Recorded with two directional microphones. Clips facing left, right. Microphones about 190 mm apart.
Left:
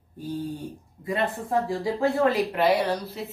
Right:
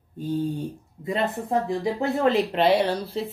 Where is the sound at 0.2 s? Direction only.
25° right (ahead or behind).